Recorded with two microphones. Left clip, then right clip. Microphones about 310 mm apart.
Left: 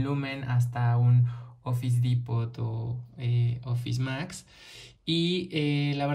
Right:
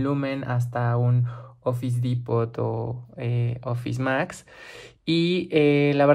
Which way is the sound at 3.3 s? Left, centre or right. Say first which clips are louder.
Right 1 dB; centre.